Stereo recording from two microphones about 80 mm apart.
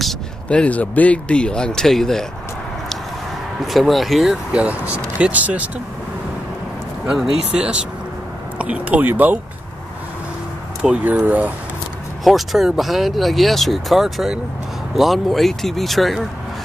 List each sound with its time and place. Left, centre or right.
0.5 s speech: centre
3.6 s speech: centre
4.5 s speech: centre
7.1 s speech: centre
10.8 s speech: centre
12.3 s speech: centre